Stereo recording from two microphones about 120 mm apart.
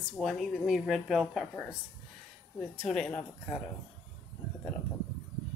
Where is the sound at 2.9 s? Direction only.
5° left (ahead or behind).